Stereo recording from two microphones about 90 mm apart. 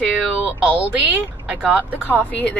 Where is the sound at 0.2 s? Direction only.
15° right (ahead or behind).